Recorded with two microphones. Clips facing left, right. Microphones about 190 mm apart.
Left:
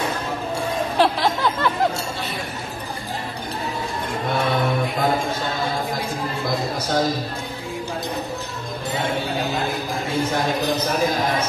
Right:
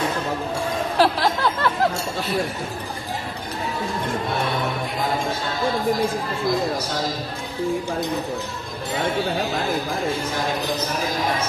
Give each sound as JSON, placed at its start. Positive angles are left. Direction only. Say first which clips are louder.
{"t": 0.9, "sound": "music", "louder": "even", "side_deg": 0}